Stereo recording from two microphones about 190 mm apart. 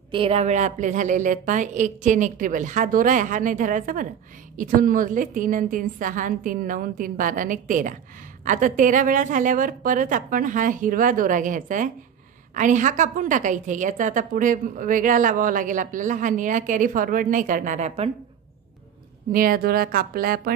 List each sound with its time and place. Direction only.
0.1 s a woman's voice: 30° right (ahead or behind)
19.3 s a woman's voice: 50° right (ahead or behind)